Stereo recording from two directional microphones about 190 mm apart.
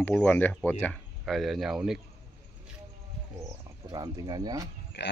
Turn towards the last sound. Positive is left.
turn(degrees=60)  # may be behind; listen again after turning